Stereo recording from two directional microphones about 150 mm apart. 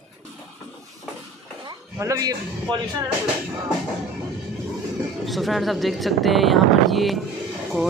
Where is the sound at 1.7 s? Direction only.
25° right (ahead or behind).